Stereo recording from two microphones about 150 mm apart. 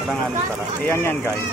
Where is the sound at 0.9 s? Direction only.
15° left (ahead or behind).